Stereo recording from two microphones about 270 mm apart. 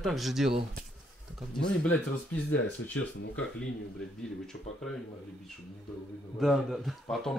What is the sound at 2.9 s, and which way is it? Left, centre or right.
Speech, left.